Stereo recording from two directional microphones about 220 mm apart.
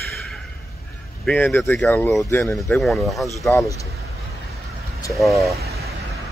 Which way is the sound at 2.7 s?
Centre (ahead or behind).